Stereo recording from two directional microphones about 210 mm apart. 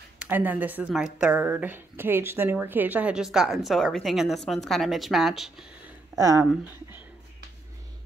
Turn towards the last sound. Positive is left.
turn(degrees=-10)  # may be behind; listen again after turning